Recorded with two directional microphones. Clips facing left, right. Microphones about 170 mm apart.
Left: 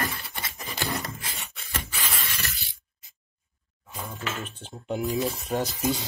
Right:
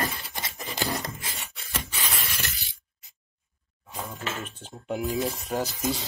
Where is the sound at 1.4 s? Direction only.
5° right (ahead or behind).